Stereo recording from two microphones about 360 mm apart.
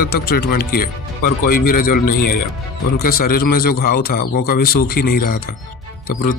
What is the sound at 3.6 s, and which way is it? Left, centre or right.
A man's voice, left.